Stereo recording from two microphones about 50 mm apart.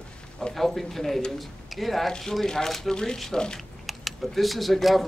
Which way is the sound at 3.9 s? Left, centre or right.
Centre.